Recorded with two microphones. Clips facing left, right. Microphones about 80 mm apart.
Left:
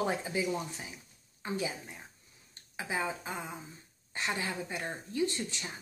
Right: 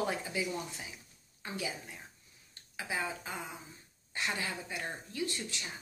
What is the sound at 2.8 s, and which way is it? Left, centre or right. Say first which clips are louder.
Speech: left 2 dB; left.